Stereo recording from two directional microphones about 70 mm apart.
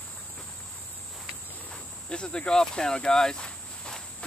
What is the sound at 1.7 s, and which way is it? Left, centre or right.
Cricket, centre.